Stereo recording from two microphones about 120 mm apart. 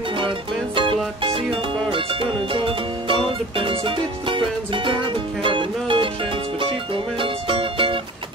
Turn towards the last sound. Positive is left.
turn(degrees=-45)  # may be behind; listen again after turning